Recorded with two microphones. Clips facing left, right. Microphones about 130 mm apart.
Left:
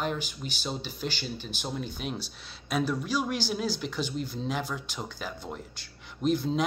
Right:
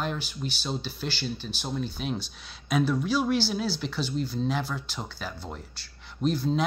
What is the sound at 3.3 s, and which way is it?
Speech, 45° left (ahead or behind).